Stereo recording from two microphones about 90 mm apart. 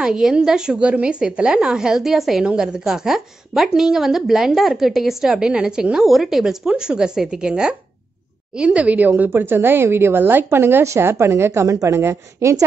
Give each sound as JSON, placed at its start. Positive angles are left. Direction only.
{"t": 0.0, "sound": "a woman's voice", "side_deg": -5}